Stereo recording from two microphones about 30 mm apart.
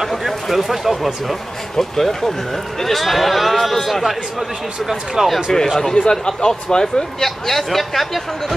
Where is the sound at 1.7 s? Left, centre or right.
Centre.